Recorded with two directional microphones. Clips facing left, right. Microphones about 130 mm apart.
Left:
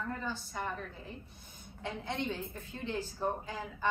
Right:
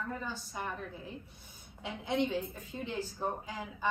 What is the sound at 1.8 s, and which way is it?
A woman's voice, 15° right (ahead or behind).